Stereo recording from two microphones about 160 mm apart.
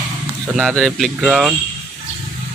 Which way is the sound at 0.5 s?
Centre (ahead or behind).